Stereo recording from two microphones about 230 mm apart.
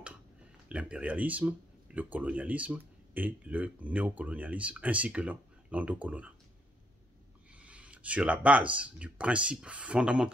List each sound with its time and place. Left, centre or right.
0.7 s speech: centre
7.5 s a sound: centre
8.7 s speech: centre